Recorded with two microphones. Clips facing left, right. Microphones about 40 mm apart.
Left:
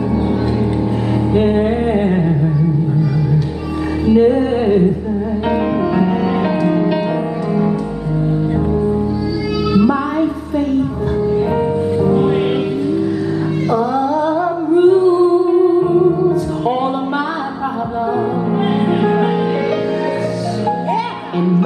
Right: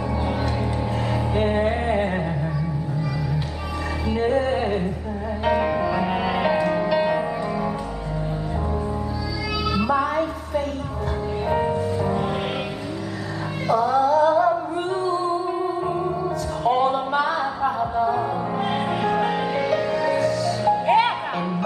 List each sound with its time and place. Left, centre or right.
1.3 s music: centre
4.1 s music: centre
6.4 s music: centre
9.8 s music: centre
11.5 s music: centre
13.7 s music: centre
18.7 s music: centre
19.7 s music: centre